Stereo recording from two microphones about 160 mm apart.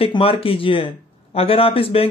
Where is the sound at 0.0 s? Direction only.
35° left (ahead or behind).